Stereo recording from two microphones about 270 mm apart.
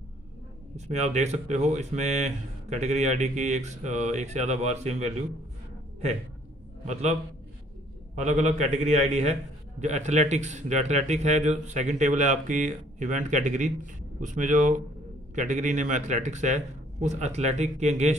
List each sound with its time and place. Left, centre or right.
0.7 s a man's voice: right
6.9 s a man's voice: right
8.2 s a man's voice: right